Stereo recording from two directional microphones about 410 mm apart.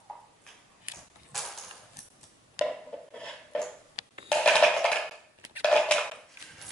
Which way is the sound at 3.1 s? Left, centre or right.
Centre.